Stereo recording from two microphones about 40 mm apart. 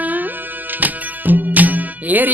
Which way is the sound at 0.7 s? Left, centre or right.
Right.